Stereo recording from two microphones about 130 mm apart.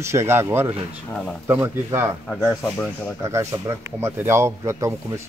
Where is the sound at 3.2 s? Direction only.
25° right (ahead or behind).